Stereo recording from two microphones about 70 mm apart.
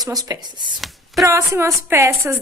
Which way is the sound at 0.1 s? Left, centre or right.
Right.